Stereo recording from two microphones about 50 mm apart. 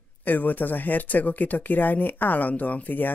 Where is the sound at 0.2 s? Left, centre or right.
Left.